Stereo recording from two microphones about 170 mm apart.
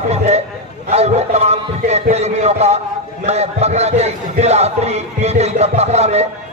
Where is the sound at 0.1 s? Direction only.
40° right (ahead or behind).